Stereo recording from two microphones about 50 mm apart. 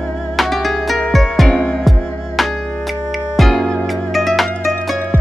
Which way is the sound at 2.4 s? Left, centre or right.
Centre.